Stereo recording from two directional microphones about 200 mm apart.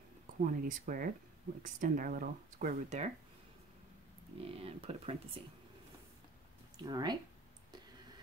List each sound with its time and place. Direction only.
0.5 s speech: 40° right (ahead or behind)
4.4 s speech: 30° right (ahead or behind)
6.8 s speech: 20° right (ahead or behind)